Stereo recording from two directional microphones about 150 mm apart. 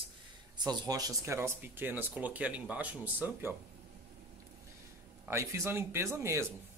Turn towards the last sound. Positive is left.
turn(degrees=-20)  # may be behind; listen again after turning